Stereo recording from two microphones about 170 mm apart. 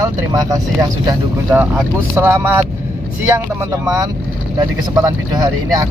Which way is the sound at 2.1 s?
15° right (ahead or behind).